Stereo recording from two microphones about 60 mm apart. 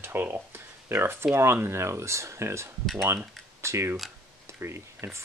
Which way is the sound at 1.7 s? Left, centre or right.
Right.